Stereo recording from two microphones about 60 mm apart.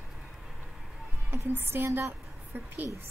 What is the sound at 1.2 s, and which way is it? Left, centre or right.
Speech, right.